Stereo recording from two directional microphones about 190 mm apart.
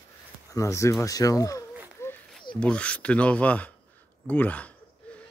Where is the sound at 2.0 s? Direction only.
10° left (ahead or behind).